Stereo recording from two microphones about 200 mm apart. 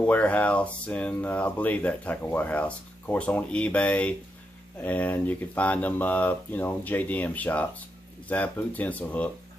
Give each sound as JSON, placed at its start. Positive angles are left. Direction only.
{"t": 0.0, "sound": "speech", "side_deg": 5}